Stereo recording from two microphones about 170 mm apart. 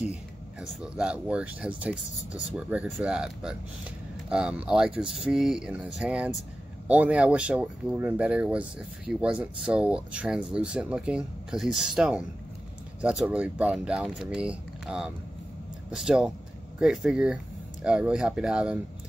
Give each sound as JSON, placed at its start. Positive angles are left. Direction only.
{"t": 0.0, "sound": "speech", "side_deg": -5}